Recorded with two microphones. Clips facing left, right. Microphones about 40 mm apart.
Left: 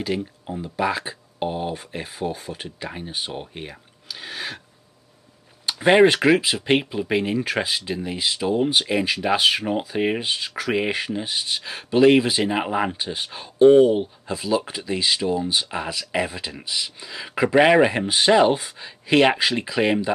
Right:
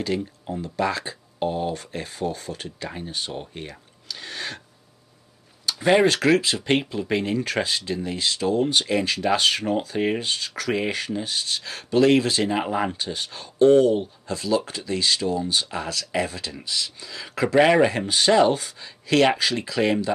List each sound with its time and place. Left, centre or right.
0.0 s speech: centre
5.7 s speech: left
6.2 s speech: centre